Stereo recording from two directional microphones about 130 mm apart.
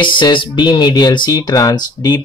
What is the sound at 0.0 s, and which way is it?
Speech, 40° left (ahead or behind).